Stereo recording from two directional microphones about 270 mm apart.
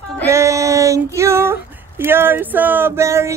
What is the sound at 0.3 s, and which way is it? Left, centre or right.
Female singing, centre.